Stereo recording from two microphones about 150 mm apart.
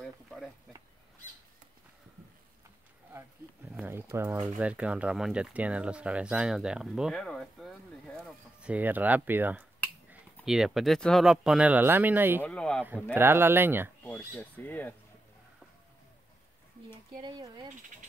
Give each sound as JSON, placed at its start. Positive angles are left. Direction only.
{"t": 0.0, "sound": "a sound", "side_deg": 5}
{"t": 3.1, "sound": "speech", "side_deg": -20}
{"t": 8.5, "sound": "speech", "side_deg": -10}
{"t": 12.4, "sound": "speech", "side_deg": 5}
{"t": 13.1, "sound": "speech", "side_deg": -15}
{"t": 14.1, "sound": "speech", "side_deg": 15}
{"t": 17.2, "sound": "speech", "side_deg": -30}